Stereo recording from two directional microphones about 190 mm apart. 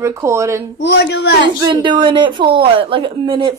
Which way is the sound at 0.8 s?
65° left (ahead or behind).